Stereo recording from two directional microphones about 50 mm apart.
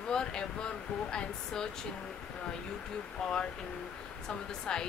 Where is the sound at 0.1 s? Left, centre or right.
Centre.